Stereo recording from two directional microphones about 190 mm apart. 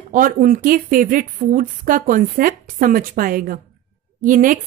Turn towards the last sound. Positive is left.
turn(degrees=-45)  # may be behind; listen again after turning